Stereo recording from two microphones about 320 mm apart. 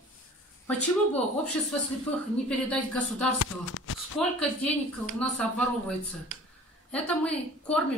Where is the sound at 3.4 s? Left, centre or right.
Left.